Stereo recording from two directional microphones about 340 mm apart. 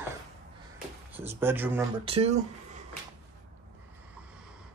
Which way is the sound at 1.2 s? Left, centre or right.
Centre.